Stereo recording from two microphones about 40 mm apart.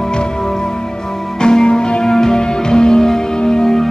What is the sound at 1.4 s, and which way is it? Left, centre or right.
Music, left.